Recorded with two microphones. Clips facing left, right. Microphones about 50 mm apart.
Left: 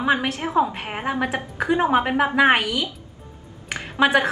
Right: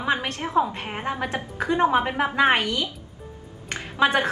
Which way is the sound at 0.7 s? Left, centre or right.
Centre.